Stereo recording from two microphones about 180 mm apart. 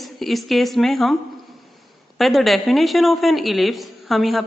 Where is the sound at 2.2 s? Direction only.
Centre (ahead or behind).